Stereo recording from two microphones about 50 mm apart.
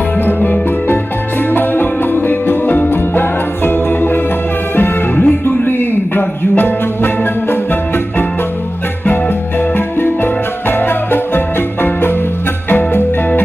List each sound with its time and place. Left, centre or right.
0.2 s music: left
9.8 s music: left